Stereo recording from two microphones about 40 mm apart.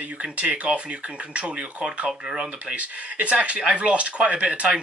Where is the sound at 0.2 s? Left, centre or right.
Right.